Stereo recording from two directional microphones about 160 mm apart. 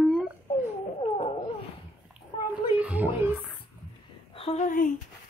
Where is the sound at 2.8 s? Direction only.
10° right (ahead or behind).